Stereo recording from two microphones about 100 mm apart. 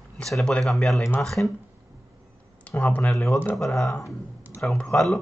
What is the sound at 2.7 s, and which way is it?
Speech, 15° left (ahead or behind).